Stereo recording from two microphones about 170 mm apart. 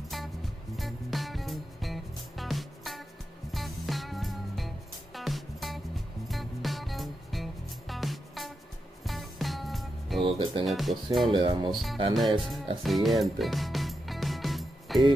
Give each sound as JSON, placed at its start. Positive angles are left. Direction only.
{"t": 0.7, "sound": "music", "side_deg": 0}
{"t": 10.2, "sound": "speech", "side_deg": -30}
{"t": 10.6, "sound": "speech", "side_deg": 0}
{"t": 11.2, "sound": "speech", "side_deg": -30}
{"t": 11.7, "sound": "speech", "side_deg": 0}
{"t": 12.8, "sound": "music", "side_deg": 0}